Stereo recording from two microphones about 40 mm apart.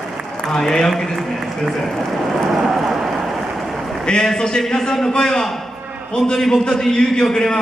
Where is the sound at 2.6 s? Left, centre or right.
Centre.